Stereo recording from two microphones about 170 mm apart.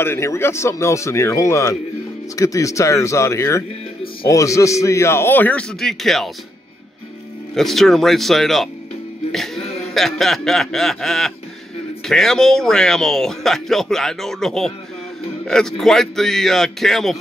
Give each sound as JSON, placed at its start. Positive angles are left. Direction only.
{"t": 0.0, "sound": "a man's voice", "side_deg": 15}
{"t": 7.5, "sound": "speech", "side_deg": 0}
{"t": 9.9, "sound": "speech", "side_deg": 0}